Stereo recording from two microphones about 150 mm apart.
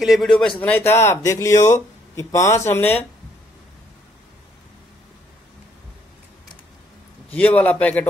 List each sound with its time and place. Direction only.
0.0 s a man's voice: centre (ahead or behind)
7.2 s a man's voice: 10° left (ahead or behind)